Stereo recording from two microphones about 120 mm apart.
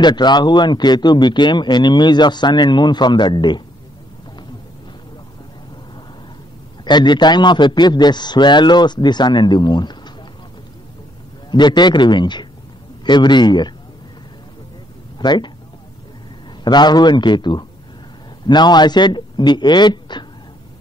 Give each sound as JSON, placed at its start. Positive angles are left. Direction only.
{"t": 0.0, "sound": "speech", "side_deg": 35}
{"t": 6.8, "sound": "speech", "side_deg": 40}
{"t": 11.5, "sound": "speech", "side_deg": 40}
{"t": 15.1, "sound": "speech", "side_deg": 40}
{"t": 16.6, "sound": "speech", "side_deg": 35}